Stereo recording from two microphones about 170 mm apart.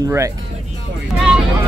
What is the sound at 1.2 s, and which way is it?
Vehicle, centre (ahead or behind).